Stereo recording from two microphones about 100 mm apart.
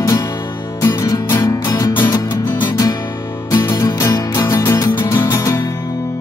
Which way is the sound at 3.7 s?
35° left (ahead or behind).